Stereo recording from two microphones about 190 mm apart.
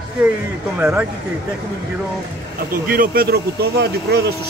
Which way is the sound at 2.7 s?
50° right (ahead or behind).